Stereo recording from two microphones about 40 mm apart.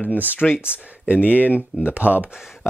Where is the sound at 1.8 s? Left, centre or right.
Right.